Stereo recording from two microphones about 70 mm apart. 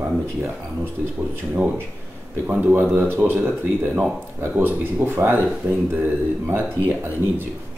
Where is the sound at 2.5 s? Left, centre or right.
Right.